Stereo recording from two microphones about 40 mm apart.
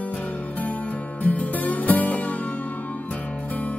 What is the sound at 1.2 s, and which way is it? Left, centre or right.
Music, left.